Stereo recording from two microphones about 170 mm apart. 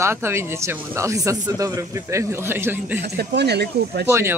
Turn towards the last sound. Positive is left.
turn(degrees=-15)  # may be behind; listen again after turning